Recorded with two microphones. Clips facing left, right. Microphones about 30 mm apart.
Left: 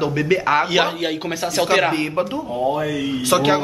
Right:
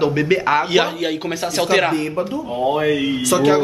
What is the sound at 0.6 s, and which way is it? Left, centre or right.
A man's voice, centre.